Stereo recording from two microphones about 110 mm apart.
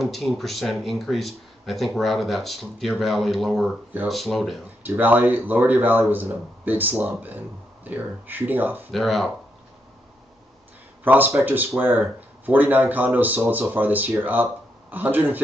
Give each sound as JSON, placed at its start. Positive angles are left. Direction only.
{"t": 0.0, "sound": "speech", "side_deg": 0}
{"t": 4.8, "sound": "speech", "side_deg": -15}
{"t": 8.9, "sound": "speech", "side_deg": 0}
{"t": 11.1, "sound": "speech", "side_deg": -15}